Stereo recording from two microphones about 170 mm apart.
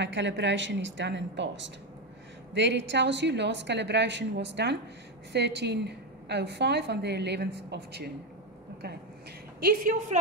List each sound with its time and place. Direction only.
0.0 s a woman's voice: 90° right
9.6 s a woman's voice: 55° right (ahead or behind)